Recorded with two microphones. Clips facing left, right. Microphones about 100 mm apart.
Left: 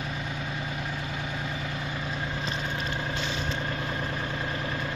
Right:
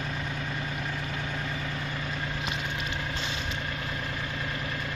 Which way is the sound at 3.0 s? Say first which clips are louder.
Left 3 dB; 30° left (ahead or behind).